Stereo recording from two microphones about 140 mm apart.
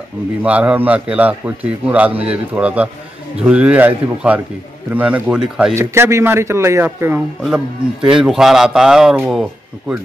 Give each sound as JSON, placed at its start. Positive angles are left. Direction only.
{"t": 0.4, "sound": "a man's voice", "side_deg": -10}
{"t": 5.8, "sound": "speech", "side_deg": -20}
{"t": 8.1, "sound": "speech", "side_deg": -5}